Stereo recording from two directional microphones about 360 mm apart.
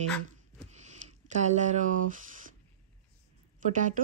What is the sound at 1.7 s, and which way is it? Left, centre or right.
Speech, right.